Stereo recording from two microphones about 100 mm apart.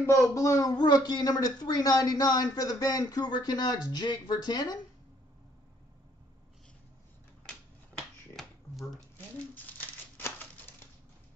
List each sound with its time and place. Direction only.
0.0 s speech: 30° left (ahead or behind)
7.5 s a sound: 10° left (ahead or behind)
9.6 s crumpling: 20° left (ahead or behind)